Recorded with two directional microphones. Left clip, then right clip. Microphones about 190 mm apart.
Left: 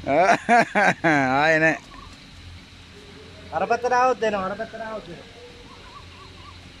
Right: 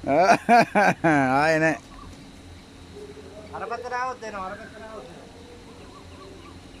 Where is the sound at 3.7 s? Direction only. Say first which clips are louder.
Left 10 dB; 50° left (ahead or behind).